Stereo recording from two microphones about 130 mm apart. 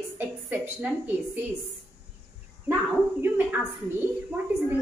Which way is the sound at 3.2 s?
15° right (ahead or behind).